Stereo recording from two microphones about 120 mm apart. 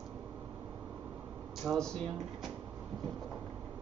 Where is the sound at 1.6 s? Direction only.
5° left (ahead or behind).